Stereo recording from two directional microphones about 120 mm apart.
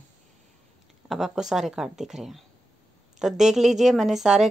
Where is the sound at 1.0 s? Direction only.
Centre (ahead or behind).